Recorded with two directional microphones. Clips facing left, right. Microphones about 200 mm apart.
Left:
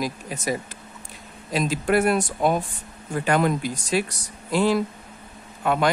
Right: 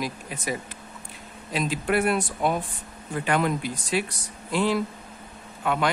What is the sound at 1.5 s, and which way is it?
Speech, 40° left (ahead or behind).